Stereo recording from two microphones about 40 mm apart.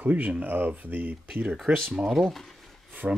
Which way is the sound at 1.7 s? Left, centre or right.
Right.